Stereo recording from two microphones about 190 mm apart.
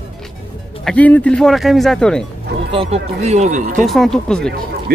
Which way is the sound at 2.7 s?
35° right (ahead or behind).